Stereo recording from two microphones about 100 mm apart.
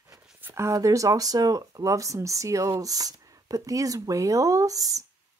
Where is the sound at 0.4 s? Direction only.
25° right (ahead or behind).